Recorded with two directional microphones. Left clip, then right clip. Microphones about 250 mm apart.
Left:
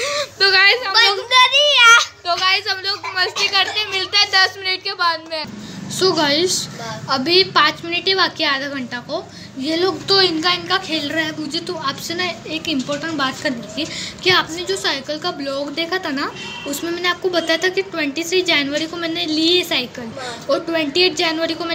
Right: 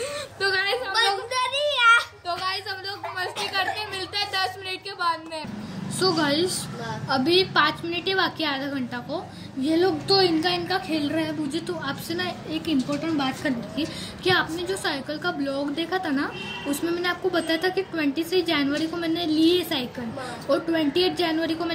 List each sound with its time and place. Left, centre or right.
0.0 s whimper: centre
5.9 s a woman's voice: centre
13.7 s a woman's voice: centre